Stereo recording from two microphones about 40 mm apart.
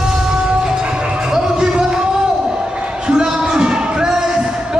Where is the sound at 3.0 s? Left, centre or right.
Centre.